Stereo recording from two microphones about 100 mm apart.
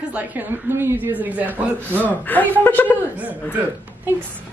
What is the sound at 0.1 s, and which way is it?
A woman's voice, 20° right (ahead or behind).